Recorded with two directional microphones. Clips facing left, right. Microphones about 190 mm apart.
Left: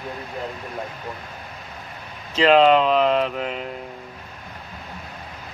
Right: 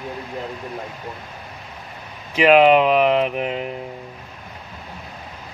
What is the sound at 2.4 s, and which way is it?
Speech, 15° right (ahead or behind).